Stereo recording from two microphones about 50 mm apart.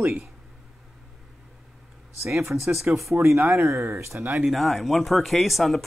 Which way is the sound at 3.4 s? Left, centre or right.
Right.